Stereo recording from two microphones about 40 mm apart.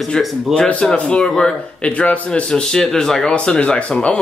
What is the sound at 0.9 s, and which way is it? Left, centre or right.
Speech, left.